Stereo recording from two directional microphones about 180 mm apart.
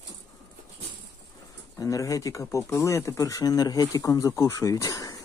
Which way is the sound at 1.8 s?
20° left (ahead or behind).